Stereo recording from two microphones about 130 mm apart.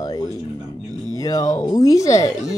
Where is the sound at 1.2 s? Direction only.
25° left (ahead or behind).